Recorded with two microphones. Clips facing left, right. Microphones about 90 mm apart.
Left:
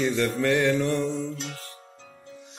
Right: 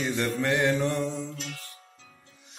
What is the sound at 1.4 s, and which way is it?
Music, 30° left (ahead or behind).